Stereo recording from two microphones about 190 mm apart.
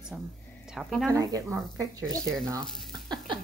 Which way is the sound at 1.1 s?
20° right (ahead or behind).